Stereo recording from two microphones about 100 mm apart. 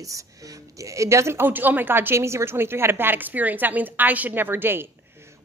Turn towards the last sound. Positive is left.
turn(degrees=-20)  # may be behind; listen again after turning